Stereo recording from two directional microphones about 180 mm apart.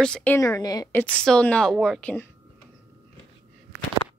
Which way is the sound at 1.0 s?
5° left (ahead or behind).